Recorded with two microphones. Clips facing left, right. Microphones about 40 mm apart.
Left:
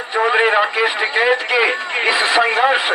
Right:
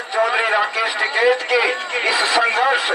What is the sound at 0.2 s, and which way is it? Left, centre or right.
A man's voice, left.